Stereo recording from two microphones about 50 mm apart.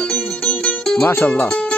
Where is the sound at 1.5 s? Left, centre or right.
Centre.